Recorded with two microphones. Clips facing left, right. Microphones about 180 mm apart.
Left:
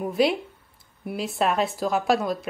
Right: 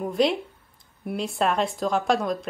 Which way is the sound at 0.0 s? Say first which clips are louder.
Even; 5° left (ahead or behind).